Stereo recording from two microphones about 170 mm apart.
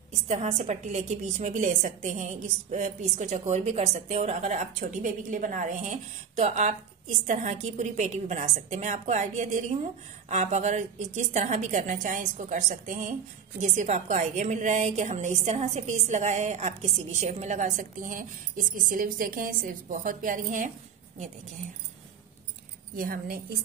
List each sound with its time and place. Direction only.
0.3 s a woman's voice: 40° right (ahead or behind)
22.9 s a woman's voice: 55° right (ahead or behind)